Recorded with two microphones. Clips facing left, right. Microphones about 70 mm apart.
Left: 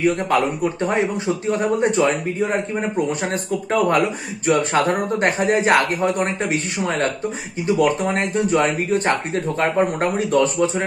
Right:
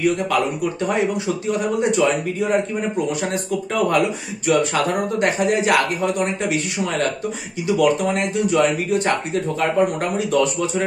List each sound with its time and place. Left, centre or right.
0.8 s a man's voice: left